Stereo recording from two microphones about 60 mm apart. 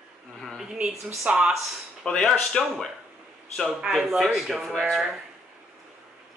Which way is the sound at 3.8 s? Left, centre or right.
Centre.